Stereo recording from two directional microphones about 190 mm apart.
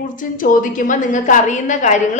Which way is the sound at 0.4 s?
45° left (ahead or behind).